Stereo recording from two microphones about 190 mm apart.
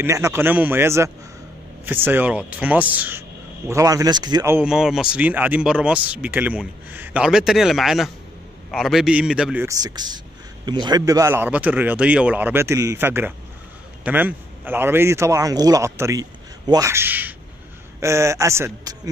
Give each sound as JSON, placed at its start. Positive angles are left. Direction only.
{"t": 0.0, "sound": "a man's voice", "side_deg": -15}
{"t": 4.6, "sound": "a man's voice", "side_deg": -5}